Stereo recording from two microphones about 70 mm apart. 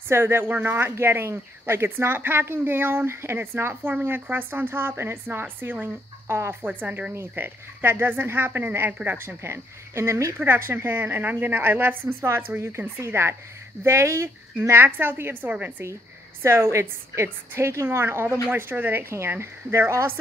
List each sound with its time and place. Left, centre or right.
0.1 s speech: right
6.2 s speech: right
6.6 s speech: right
9.4 s speech: right